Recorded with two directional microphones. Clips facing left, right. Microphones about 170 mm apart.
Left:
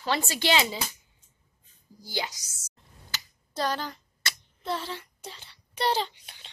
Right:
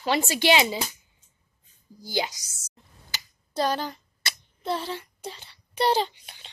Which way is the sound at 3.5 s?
20° right (ahead or behind).